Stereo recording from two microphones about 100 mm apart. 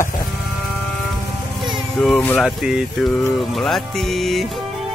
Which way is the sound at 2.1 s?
15° left (ahead or behind).